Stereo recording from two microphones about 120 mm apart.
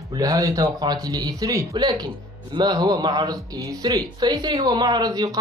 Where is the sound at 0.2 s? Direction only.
30° right (ahead or behind).